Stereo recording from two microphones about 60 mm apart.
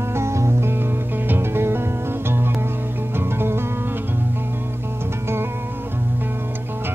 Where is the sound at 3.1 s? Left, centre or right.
Right.